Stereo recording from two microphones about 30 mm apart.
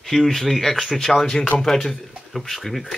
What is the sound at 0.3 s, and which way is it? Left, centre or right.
Speech, centre.